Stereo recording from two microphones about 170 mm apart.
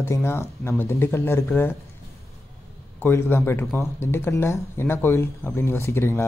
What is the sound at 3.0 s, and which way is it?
Speech, 15° left (ahead or behind).